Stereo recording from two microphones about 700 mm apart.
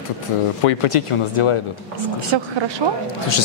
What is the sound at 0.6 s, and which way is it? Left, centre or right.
Speech, left.